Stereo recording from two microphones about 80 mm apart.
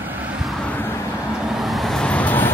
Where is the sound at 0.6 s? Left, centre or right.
Centre.